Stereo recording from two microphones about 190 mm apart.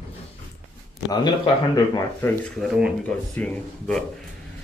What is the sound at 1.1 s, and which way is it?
Speech, 25° left (ahead or behind).